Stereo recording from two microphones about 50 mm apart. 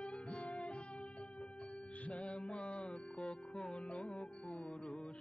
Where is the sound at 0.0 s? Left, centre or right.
Left.